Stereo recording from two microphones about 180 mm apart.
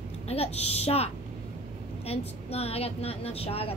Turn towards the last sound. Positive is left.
turn(degrees=35)  # may be behind; listen again after turning